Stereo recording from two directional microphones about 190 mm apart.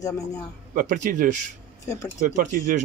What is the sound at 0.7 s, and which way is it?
Speech, 45° right (ahead or behind).